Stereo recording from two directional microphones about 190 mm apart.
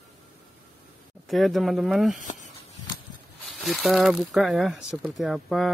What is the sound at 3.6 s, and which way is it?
Speech, centre (ahead or behind).